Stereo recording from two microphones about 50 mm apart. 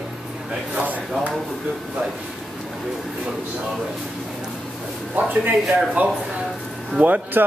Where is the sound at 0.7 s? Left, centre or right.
Right.